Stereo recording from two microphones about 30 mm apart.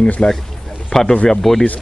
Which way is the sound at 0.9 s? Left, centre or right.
Left.